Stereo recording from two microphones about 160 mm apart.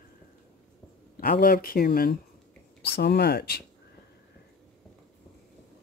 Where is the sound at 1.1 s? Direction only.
65° left (ahead or behind).